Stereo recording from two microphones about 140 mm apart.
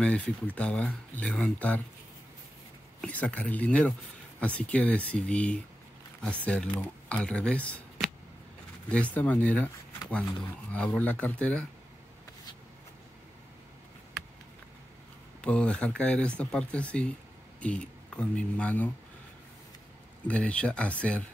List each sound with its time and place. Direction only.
0.0 s speech: 10° left (ahead or behind)
3.0 s speech: 10° left (ahead or behind)
10.7 s speech: 10° left (ahead or behind)
15.4 s speech: 10° left (ahead or behind)
20.2 s speech: 10° left (ahead or behind)